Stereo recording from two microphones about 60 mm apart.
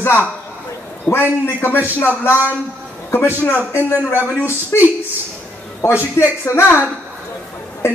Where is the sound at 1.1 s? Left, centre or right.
Left.